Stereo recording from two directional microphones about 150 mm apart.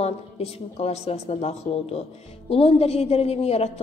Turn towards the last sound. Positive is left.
turn(degrees=45)  # may be behind; listen again after turning